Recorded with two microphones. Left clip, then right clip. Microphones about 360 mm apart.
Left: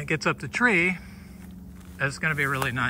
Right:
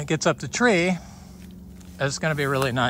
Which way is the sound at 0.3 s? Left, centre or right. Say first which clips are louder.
Right 2 dB; centre.